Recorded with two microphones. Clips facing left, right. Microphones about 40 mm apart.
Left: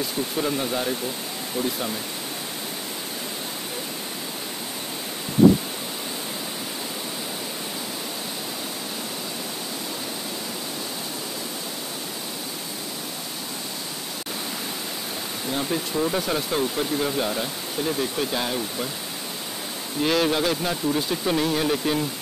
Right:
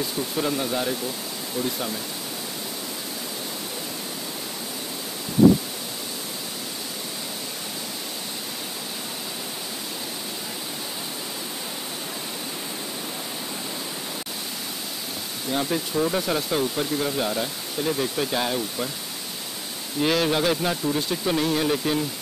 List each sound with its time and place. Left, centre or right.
0.4 s speech: centre
15.5 s speech: centre
20.0 s speech: centre